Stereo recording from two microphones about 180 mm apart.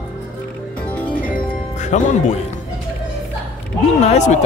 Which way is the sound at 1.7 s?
40° left (ahead or behind).